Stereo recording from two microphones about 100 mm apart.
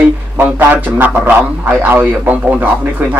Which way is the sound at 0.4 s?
20° right (ahead or behind).